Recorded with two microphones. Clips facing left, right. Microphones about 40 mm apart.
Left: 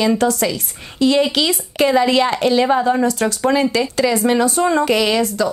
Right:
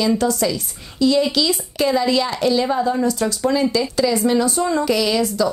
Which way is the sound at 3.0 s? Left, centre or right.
Left.